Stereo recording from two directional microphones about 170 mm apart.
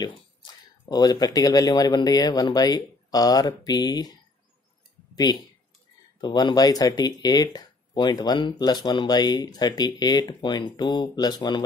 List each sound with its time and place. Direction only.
0.0 s speech: 25° left (ahead or behind)